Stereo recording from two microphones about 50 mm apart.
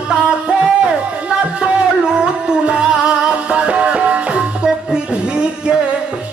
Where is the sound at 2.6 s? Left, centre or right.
Centre.